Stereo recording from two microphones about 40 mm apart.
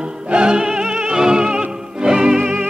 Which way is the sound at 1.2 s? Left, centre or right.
Centre.